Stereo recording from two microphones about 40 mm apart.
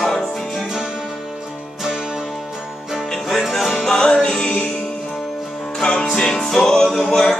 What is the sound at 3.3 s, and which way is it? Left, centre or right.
Music, centre.